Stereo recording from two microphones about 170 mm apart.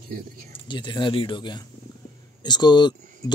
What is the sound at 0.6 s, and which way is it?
Speech, 30° left (ahead or behind).